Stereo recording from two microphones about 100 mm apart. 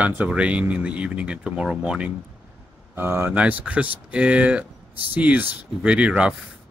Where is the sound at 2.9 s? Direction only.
25° right (ahead or behind).